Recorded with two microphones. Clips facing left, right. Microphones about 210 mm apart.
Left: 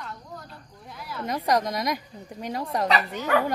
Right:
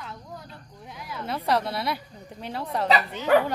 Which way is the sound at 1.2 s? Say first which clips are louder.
Left 1 dB; 15° left (ahead or behind).